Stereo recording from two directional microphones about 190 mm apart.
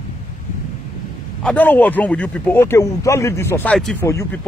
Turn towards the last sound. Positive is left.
turn(degrees=15)  # may be behind; listen again after turning